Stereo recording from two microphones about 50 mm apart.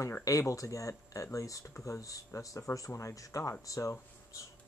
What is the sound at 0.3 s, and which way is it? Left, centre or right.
Speech, left.